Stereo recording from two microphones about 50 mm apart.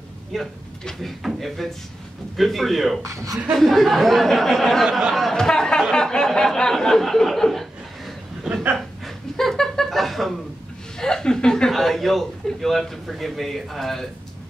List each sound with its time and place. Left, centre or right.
0.3 s a man's voice: centre
3.0 s speech: right
3.5 s a man's voice: centre
8.7 s chuckle: centre
11.0 s a man's voice: centre